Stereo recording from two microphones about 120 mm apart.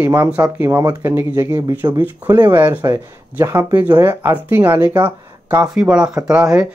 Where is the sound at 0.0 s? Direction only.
25° right (ahead or behind).